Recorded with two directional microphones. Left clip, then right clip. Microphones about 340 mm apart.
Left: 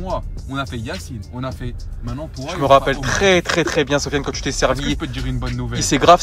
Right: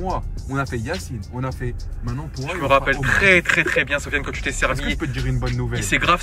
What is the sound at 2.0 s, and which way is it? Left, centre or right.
Speech, centre.